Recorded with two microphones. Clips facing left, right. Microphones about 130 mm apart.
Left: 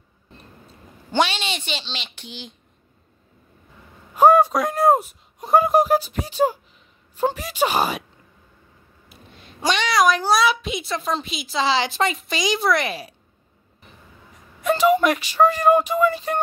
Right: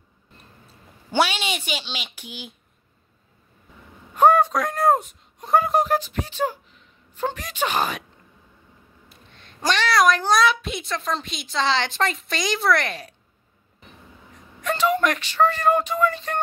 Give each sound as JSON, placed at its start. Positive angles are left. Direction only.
{"t": 1.1, "sound": "a woman's voice", "side_deg": -10}
{"t": 4.1, "sound": "speech", "side_deg": 5}
{"t": 9.4, "sound": "a child's voice", "side_deg": 0}
{"t": 14.6, "sound": "speech", "side_deg": 10}